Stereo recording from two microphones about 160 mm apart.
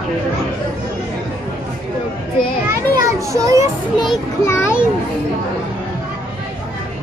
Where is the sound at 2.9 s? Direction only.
20° right (ahead or behind).